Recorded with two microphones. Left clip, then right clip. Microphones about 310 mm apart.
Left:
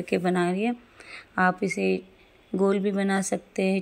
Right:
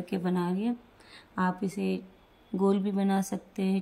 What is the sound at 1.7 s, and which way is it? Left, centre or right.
A woman's voice, left.